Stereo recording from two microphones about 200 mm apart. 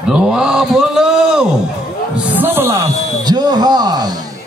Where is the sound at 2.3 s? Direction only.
10° right (ahead or behind).